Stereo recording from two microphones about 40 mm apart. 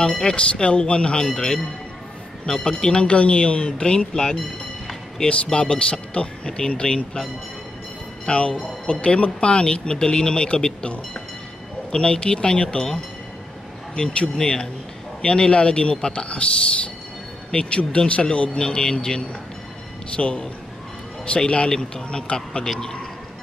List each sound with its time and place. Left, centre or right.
0.0 s speech: centre
4.2 s music: centre
5.2 s speech: left
8.3 s speech: left
17.6 s speech: left
21.5 s speech: left